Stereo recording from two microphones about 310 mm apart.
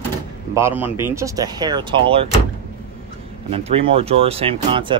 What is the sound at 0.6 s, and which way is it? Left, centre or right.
Speech, centre.